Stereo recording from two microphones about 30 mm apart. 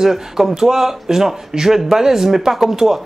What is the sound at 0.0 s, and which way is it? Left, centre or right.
Speech, centre.